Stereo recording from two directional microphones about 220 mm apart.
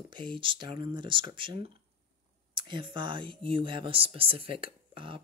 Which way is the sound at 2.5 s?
20° right (ahead or behind).